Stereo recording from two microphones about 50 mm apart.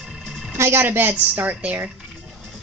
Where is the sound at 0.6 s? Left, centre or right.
Right.